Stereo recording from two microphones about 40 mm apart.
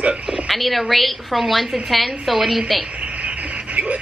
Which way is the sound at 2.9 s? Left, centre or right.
Right.